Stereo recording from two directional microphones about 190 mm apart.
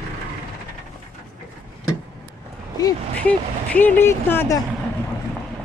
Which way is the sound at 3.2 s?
10° left (ahead or behind).